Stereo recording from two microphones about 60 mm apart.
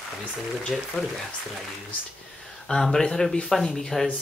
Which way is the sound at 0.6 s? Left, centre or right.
Centre.